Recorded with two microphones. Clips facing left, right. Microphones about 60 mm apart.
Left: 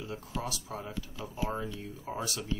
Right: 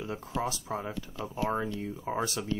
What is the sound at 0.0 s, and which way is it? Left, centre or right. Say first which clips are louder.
Speech: right 5 dB; right.